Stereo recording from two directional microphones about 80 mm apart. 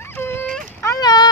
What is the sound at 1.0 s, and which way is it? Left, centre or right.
Speech, left.